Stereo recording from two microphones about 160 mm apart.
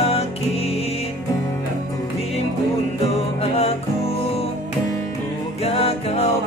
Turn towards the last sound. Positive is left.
turn(degrees=40)  # may be behind; listen again after turning